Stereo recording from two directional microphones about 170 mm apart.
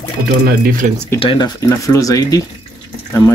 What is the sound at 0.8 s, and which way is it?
Speech, 50° right (ahead or behind).